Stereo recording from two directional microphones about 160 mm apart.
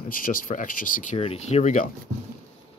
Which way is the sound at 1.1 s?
40° left (ahead or behind).